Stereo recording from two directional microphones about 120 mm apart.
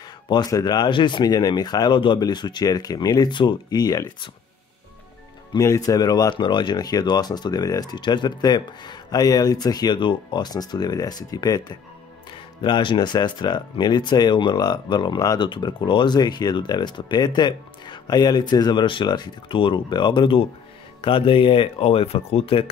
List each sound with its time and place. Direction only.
0.3 s speech: 35° left (ahead or behind)
5.5 s speech: 40° left (ahead or behind)